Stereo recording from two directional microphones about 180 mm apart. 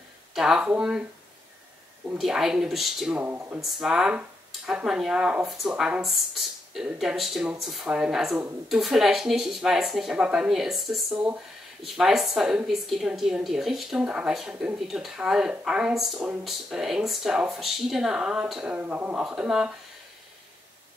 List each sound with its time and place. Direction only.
0.3 s speech: centre (ahead or behind)
2.0 s speech: 5° right (ahead or behind)